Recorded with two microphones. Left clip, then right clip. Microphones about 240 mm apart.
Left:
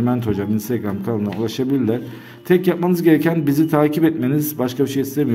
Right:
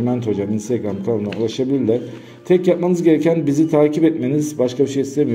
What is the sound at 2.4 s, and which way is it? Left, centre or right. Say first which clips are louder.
A man's voice: right 2 dB; left.